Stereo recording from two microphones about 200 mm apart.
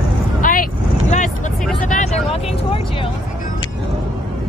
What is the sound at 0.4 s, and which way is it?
Vehicle, 45° left (ahead or behind).